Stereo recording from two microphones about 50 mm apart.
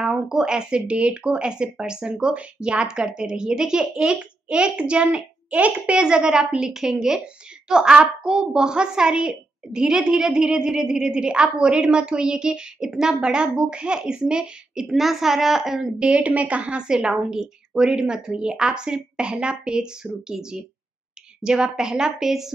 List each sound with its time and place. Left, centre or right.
0.0 s a woman's voice: centre
16.2 s a woman's voice: right; by 22.5 s centre